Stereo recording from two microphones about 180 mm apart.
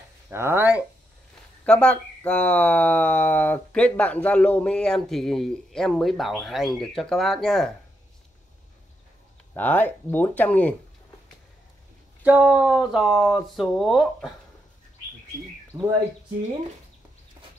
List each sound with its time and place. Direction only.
0.3 s speech: 15° right (ahead or behind)
1.7 s speech: 5° left (ahead or behind)
9.5 s speech: 10° left (ahead or behind)
12.2 s speech: 10° right (ahead or behind)
15.7 s speech: 15° right (ahead or behind)